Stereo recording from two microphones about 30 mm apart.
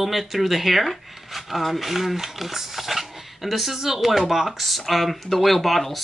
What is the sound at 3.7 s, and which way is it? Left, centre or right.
Speech, centre.